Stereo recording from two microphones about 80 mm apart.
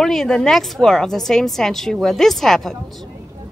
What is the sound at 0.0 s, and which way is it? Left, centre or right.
A woman's voice, centre.